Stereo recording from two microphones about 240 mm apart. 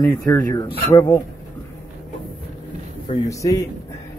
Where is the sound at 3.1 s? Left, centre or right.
Centre.